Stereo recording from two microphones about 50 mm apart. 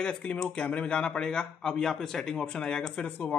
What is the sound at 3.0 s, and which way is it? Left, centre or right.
Speech, left.